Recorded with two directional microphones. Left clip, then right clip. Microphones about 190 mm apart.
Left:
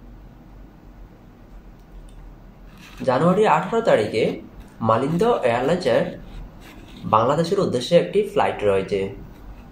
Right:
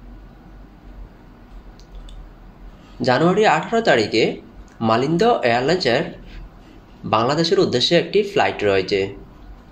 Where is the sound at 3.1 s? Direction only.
40° right (ahead or behind).